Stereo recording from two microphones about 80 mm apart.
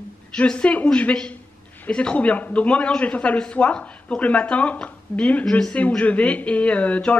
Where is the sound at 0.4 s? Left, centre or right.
Centre.